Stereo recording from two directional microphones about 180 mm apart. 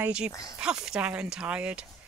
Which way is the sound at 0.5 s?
5° right (ahead or behind).